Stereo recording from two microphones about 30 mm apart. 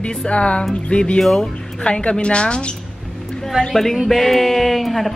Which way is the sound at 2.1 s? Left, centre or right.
Left.